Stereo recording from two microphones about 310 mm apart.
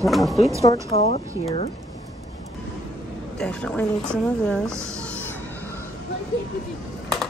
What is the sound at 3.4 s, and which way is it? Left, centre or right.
Speech, centre.